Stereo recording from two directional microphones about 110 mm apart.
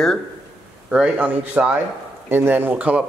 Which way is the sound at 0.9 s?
10° right (ahead or behind).